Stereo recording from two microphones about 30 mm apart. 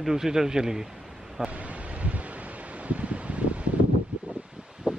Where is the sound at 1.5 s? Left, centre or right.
Right.